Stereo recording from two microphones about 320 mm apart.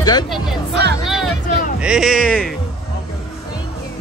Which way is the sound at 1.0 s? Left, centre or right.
Centre.